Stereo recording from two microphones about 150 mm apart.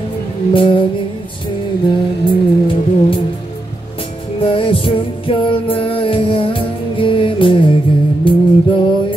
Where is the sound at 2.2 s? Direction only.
35° left (ahead or behind).